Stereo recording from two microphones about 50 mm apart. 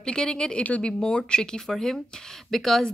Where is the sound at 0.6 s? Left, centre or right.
Left.